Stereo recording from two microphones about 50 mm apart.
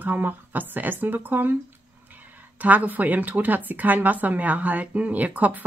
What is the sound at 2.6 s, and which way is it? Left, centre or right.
A woman's voice, right.